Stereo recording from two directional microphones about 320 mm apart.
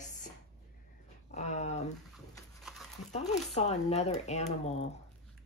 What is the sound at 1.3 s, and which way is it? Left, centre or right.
Speech, left.